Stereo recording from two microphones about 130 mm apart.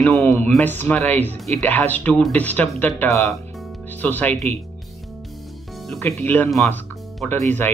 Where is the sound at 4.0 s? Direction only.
10° left (ahead or behind).